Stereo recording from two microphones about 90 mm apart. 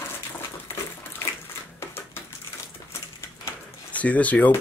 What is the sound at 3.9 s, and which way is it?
Speech, 15° left (ahead or behind).